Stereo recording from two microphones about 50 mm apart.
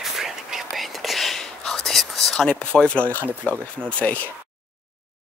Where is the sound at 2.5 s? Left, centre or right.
Left.